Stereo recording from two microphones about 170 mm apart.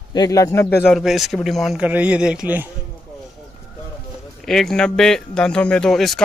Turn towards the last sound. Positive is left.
turn(degrees=0)  # may be behind; listen again after turning